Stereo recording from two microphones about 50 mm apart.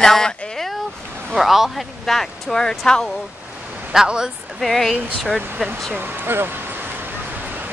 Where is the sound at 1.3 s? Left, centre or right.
Centre.